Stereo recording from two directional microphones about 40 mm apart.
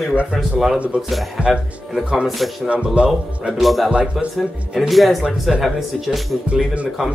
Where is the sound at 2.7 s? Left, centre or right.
Right.